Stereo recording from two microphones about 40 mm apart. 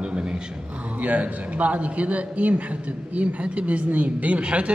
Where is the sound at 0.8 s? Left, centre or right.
Right.